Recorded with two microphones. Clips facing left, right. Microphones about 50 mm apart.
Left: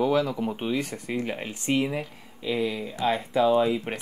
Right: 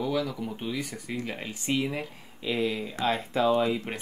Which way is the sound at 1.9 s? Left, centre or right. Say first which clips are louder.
Left 3 dB; centre.